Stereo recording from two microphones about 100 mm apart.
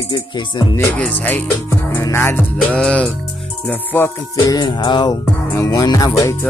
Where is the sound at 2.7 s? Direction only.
10° left (ahead or behind).